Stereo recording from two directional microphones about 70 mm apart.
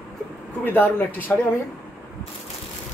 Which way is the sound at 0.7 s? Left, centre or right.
Left.